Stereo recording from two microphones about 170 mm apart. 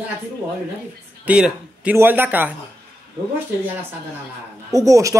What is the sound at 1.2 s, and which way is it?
Speech, 5° right (ahead or behind).